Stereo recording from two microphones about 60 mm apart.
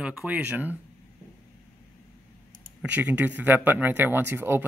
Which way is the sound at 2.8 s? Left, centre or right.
Right.